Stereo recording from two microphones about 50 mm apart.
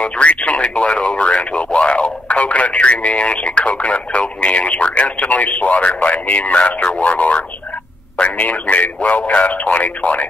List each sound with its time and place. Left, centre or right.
0.0 s speech: left